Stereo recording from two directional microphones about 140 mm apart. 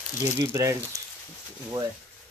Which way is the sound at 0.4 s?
20° right (ahead or behind).